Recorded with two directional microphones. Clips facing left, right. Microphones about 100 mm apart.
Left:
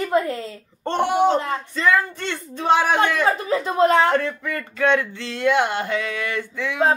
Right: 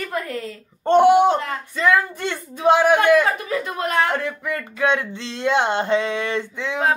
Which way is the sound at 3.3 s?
30° left (ahead or behind).